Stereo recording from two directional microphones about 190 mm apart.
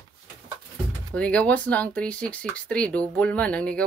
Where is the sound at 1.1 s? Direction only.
5° left (ahead or behind).